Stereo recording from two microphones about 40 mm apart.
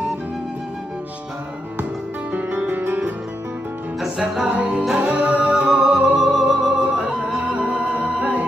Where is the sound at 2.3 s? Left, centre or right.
Right.